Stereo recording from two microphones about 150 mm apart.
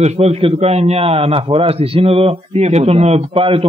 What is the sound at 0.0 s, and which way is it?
A man's voice, 45° right (ahead or behind).